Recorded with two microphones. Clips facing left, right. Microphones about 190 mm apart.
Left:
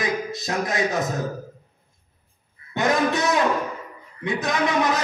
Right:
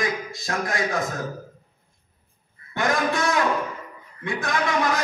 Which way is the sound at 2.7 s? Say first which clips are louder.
Left 2 dB; 20° left (ahead or behind).